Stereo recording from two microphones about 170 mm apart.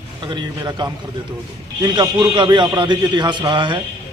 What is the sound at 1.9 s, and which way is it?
A man's voice, 25° right (ahead or behind).